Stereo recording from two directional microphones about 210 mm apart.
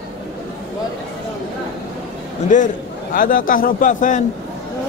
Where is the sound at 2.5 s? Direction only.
35° left (ahead or behind).